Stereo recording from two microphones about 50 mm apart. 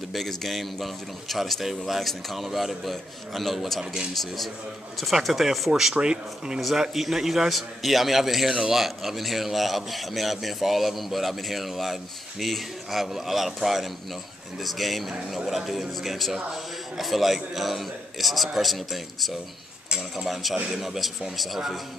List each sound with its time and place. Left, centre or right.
0.1 s a man's voice: centre
5.9 s speech: centre
6.6 s a man's voice: centre